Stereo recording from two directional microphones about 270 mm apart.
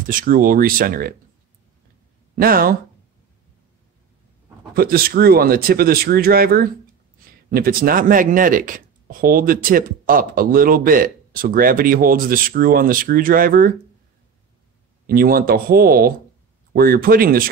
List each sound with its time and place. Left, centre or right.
0.1 s speech: right
2.3 s speech: right
4.7 s speech: right
15.0 s speech: right